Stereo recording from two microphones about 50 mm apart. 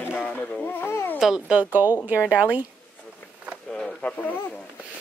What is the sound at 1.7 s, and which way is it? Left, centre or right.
Speech, right.